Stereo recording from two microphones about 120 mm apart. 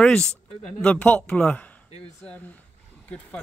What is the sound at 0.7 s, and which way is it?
Speech, 10° left (ahead or behind).